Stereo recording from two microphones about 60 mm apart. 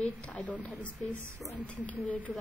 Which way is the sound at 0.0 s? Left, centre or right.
Left.